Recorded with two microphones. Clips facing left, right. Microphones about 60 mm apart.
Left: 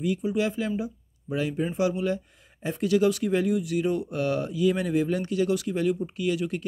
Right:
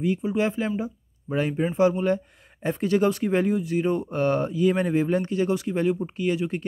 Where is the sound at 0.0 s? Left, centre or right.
Right.